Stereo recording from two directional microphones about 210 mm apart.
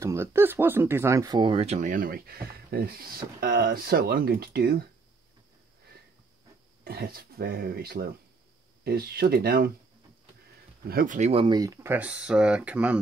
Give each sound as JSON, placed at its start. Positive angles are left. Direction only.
{"t": 0.0, "sound": "speech", "side_deg": -15}
{"t": 6.8, "sound": "speech", "side_deg": -45}
{"t": 10.9, "sound": "speech", "side_deg": -40}